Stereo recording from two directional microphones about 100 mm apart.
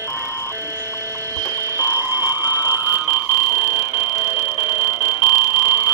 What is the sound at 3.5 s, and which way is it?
Music, 45° left (ahead or behind).